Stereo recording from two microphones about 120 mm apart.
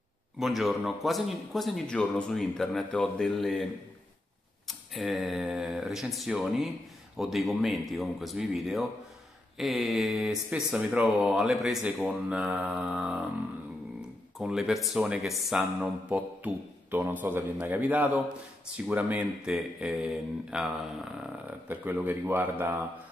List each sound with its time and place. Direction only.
0.4 s speech: centre (ahead or behind)
4.6 s speech: centre (ahead or behind)
14.4 s speech: centre (ahead or behind)
21.5 s speech: 15° right (ahead or behind)